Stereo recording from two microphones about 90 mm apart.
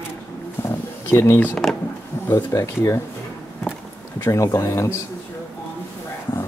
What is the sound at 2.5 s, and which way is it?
Speech, 35° left (ahead or behind).